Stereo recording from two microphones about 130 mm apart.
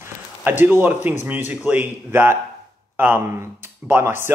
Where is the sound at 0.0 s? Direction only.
15° right (ahead or behind).